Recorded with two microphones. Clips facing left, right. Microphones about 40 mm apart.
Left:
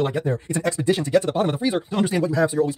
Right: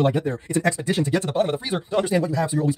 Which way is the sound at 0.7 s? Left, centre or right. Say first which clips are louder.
Left 2 dB; left.